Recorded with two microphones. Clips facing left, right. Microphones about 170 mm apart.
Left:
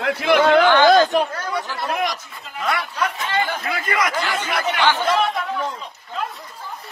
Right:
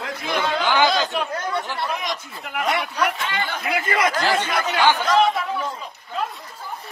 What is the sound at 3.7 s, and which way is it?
Speech, 25° right (ahead or behind).